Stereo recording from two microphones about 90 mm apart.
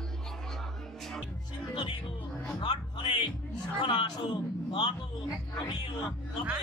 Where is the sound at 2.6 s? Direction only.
60° left (ahead or behind).